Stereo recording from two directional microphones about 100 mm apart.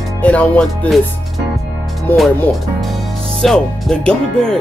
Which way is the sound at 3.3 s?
5° left (ahead or behind).